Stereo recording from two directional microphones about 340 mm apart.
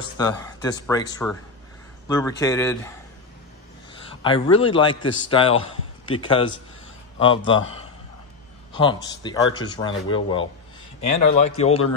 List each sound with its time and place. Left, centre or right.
0.2 s a man's voice: centre
4.1 s a man's voice: centre
8.7 s a man's voice: centre